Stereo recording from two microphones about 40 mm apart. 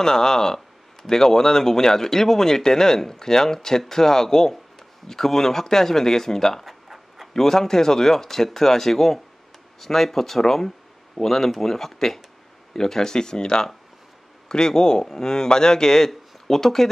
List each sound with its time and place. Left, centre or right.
0.0 s speech: centre
6.6 s writing: centre
7.3 s speech: centre